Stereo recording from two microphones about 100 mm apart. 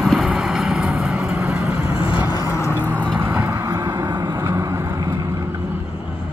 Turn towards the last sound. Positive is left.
turn(degrees=-30)  # may be behind; listen again after turning